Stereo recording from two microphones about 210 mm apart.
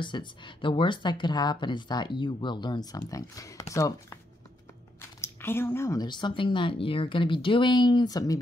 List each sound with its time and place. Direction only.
0.0 s speech: 20° left (ahead or behind)
5.2 s speech: 10° left (ahead or behind)